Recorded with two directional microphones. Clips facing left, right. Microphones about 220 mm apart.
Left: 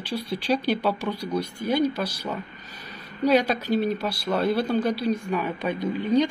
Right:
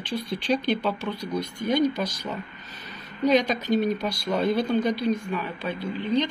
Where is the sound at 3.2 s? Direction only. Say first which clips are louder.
Even; 10° left (ahead or behind).